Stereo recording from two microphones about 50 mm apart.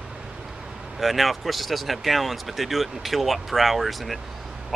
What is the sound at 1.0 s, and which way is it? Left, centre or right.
Speech, centre.